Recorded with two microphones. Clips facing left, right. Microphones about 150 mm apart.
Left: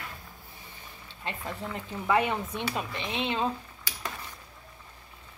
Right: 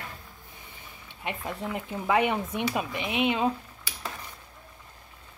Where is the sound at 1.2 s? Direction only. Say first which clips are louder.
Right 3 dB; 15° right (ahead or behind).